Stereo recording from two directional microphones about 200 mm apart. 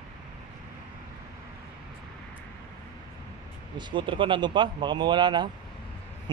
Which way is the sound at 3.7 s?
25° right (ahead or behind).